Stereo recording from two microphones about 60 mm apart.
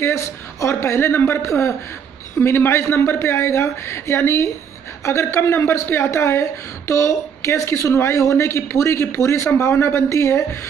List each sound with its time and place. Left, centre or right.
0.0 s a woman's voice: left
1.4 s a woman's voice: left